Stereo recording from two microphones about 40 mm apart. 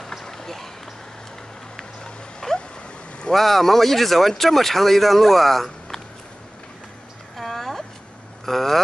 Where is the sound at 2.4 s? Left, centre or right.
Centre.